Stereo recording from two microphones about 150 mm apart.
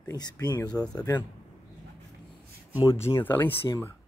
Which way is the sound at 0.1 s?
25° left (ahead or behind).